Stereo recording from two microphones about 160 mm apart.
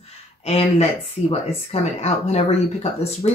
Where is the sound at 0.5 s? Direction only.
40° left (ahead or behind).